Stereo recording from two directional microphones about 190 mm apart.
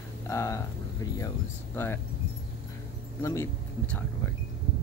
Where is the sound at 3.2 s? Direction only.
15° left (ahead or behind).